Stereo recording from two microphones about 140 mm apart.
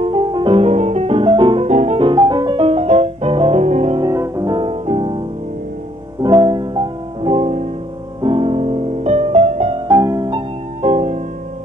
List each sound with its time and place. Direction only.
0.0 s music: 35° right (ahead or behind)
1.7 s music: 55° right (ahead or behind)
2.0 s music: 30° right (ahead or behind); by 4.0 s 50° right (ahead or behind)
4.0 s music: 25° right (ahead or behind)
4.6 s music: 40° right (ahead or behind)
6.2 s music: 30° right (ahead or behind); by 7.7 s 50° right (ahead or behind)
8.2 s music: 40° right (ahead or behind)
9.8 s music: 30° right (ahead or behind)
10.8 s music: 50° right (ahead or behind)